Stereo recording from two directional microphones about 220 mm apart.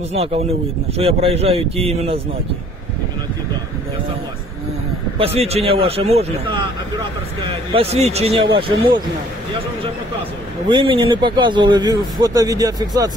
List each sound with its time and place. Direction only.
0.1 s a man's voice: 30° right (ahead or behind)
5.2 s a man's voice: 25° right (ahead or behind)
10.7 s a man's voice: 20° right (ahead or behind)